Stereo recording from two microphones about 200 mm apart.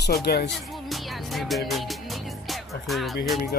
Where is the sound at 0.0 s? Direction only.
55° left (ahead or behind).